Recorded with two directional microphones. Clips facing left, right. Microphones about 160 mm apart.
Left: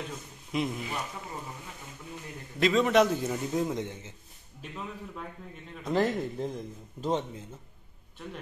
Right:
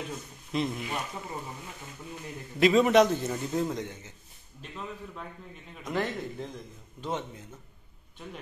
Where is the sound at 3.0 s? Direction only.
10° left (ahead or behind).